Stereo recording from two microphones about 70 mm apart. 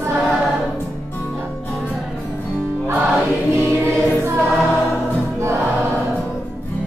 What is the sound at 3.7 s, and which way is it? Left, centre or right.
Music, left.